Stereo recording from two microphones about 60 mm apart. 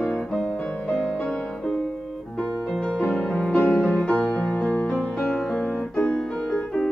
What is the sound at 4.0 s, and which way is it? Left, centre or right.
Music, left.